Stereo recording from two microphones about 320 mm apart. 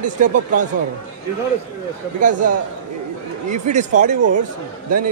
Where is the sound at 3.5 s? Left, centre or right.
Right.